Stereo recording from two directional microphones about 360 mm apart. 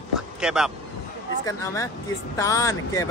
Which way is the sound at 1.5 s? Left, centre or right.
Centre.